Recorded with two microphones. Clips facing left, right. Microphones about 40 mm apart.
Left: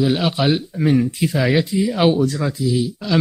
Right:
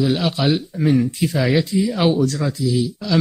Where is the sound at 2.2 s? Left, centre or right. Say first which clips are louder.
Even; centre.